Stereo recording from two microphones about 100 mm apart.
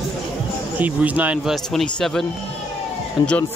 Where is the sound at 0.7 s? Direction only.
15° right (ahead or behind).